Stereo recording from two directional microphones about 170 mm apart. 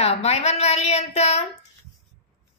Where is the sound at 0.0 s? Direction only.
40° left (ahead or behind).